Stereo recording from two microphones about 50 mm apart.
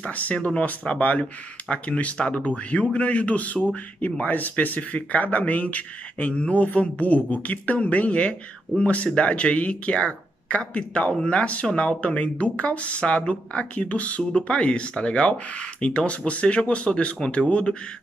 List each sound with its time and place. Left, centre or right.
0.0 s speech: left